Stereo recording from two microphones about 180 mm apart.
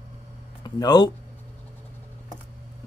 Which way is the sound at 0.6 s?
20° left (ahead or behind).